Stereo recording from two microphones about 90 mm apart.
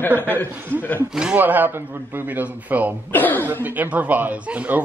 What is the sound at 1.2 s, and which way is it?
A man's voice, 15° right (ahead or behind).